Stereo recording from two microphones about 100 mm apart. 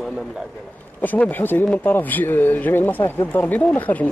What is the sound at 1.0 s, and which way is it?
Speech, 15° left (ahead or behind).